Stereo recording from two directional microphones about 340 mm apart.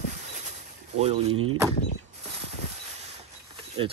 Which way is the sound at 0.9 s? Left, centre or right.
Centre.